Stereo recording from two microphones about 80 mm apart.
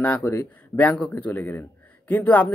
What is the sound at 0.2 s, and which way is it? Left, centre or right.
Speech, left.